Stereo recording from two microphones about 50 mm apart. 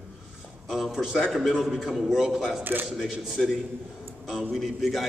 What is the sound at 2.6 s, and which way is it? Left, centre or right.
Speech, right.